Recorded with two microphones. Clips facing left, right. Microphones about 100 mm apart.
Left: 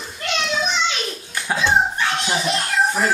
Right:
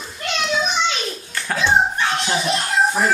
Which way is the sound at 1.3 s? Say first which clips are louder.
Left 2 dB; 15° left (ahead or behind).